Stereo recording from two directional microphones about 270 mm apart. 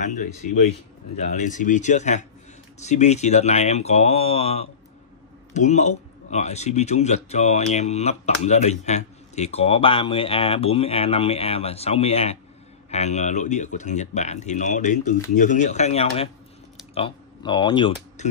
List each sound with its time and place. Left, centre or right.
0.0 s speech: left